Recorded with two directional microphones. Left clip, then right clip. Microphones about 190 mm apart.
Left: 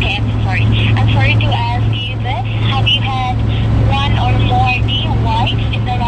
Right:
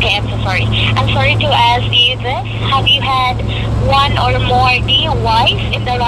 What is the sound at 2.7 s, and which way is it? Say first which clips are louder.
Speech: right 4 dB; 20° right (ahead or behind).